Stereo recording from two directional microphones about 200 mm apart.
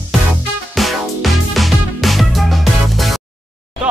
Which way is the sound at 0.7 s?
Centre (ahead or behind).